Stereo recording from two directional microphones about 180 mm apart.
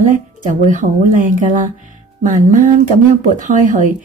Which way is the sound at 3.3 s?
45° right (ahead or behind).